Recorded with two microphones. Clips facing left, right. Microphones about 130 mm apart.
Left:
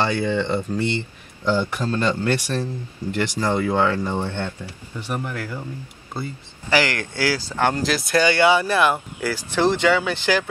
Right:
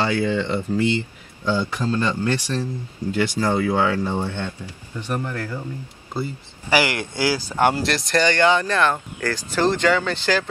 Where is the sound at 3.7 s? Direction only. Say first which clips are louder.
Even; 10° right (ahead or behind).